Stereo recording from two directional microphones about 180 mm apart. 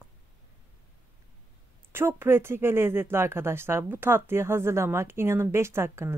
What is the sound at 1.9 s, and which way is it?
Speech, 15° right (ahead or behind).